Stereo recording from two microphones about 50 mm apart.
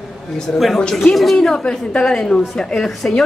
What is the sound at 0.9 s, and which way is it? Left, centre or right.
A woman's voice, centre.